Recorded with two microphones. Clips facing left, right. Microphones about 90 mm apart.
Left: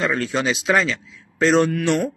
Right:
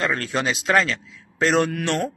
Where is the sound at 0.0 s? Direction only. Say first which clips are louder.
Left 2 dB; centre (ahead or behind).